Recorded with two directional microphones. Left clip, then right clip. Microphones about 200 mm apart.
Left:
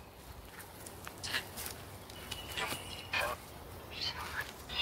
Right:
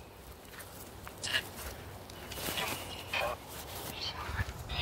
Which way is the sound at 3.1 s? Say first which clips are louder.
Right 1 dB; 10° left (ahead or behind).